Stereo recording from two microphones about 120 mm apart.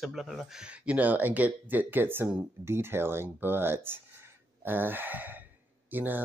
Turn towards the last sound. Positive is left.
turn(degrees=-15)  # may be behind; listen again after turning